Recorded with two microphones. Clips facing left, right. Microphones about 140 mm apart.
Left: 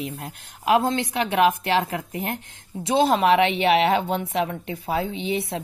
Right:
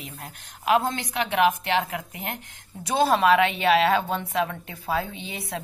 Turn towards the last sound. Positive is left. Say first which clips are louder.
# left 9 dB
turn(degrees=25)  # may be behind; listen again after turning